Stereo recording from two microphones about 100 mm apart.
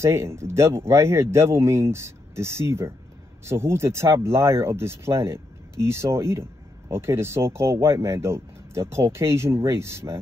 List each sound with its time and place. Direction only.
0.0 s speech: 25° right (ahead or behind)